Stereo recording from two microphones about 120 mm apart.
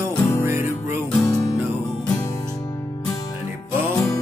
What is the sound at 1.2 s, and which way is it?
Music, 25° left (ahead or behind).